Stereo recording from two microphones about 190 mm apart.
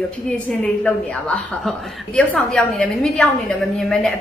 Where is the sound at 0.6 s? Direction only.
5° left (ahead or behind).